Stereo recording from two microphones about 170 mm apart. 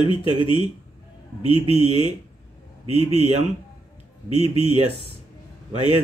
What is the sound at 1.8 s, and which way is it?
Speech, 40° right (ahead or behind).